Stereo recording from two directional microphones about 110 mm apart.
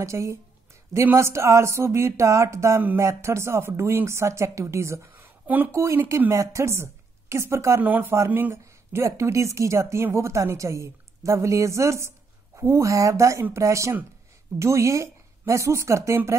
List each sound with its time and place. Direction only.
0.0 s speech: 25° right (ahead or behind)